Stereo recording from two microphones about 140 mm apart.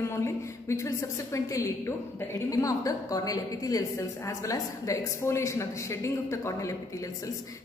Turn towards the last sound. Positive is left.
turn(degrees=20)  # may be behind; listen again after turning